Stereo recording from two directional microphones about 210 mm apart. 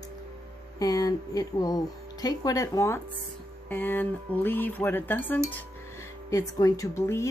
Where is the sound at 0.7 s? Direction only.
20° left (ahead or behind).